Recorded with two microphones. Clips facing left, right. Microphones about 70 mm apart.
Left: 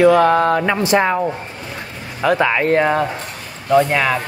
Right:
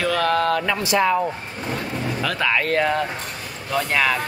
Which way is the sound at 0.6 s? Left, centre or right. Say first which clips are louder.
Left 6 dB; left.